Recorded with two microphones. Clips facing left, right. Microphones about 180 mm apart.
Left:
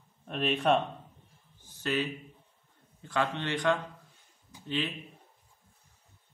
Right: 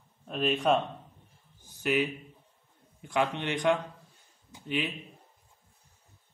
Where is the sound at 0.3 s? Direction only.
Centre (ahead or behind).